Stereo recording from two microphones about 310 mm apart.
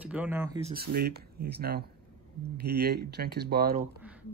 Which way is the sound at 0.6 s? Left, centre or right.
Right.